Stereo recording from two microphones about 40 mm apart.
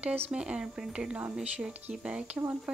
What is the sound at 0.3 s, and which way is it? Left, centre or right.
Speech, right.